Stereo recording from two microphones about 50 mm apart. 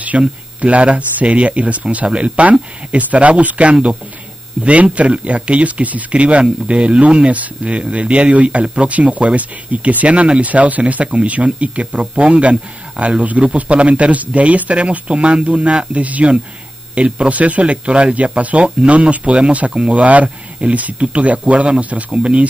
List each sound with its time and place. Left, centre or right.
0.2 s speech: right